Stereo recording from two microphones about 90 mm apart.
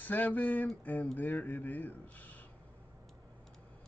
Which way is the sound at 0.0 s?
20° left (ahead or behind).